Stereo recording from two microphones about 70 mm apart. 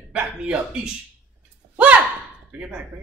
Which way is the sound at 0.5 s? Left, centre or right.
Centre.